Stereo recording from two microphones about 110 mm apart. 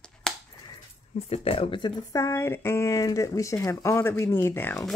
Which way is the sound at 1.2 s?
60° left (ahead or behind).